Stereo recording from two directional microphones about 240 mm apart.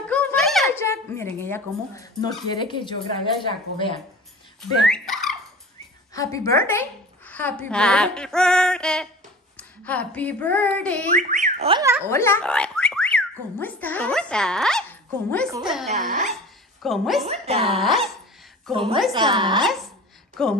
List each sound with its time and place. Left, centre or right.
0.1 s a sound: centre
0.7 s speech: centre
4.6 s speech: centre
6.1 s a woman's voice: centre
11.1 s speech: right
11.8 s speech: centre
12.1 s a woman's voice: centre
17.3 s speech: right
17.7 s a woman's voice: centre
19.1 s speech: centre
19.6 s a woman's voice: centre